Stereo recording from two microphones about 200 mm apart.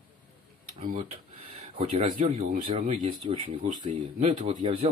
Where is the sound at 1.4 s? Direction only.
30° right (ahead or behind).